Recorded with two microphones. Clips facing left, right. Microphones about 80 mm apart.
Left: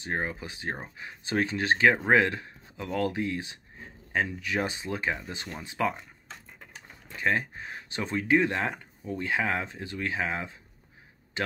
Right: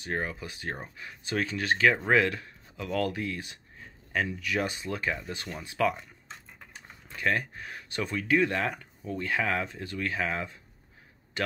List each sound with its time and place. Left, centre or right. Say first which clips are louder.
0.0 s speech: left 1 dB; left
7.2 s speech: left 1 dB; left